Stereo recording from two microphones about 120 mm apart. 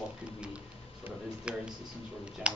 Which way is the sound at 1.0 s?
10° right (ahead or behind).